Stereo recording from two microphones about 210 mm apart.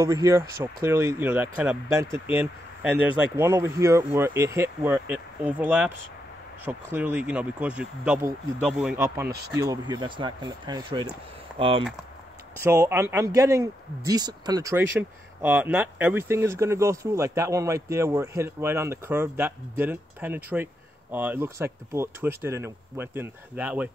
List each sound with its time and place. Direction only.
0.0 s speech: 15° right (ahead or behind)
12.5 s speech: 10° right (ahead or behind)